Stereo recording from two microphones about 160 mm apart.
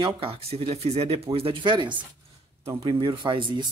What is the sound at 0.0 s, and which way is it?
Speech, 35° right (ahead or behind).